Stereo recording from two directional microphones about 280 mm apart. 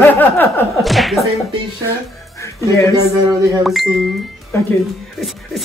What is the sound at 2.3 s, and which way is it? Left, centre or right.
Speech, centre.